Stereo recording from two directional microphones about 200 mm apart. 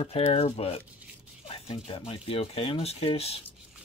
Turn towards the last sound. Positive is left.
turn(degrees=30)  # may be behind; listen again after turning